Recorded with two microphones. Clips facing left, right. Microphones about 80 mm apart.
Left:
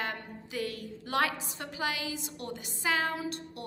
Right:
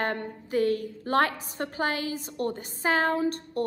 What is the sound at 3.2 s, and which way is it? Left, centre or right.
Music, right.